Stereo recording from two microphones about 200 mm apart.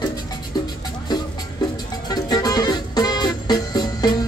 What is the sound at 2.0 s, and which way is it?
Music, 20° left (ahead or behind).